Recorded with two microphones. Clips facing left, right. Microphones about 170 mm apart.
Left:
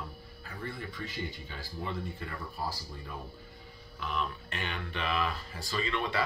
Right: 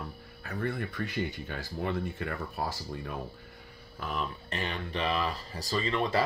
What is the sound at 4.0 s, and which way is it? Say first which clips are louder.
Speech: even; 40° right (ahead or behind).